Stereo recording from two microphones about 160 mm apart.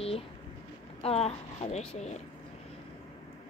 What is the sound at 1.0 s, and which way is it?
A woman's voice, 40° left (ahead or behind).